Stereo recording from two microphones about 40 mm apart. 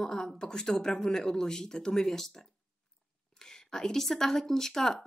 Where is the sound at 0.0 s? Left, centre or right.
Centre.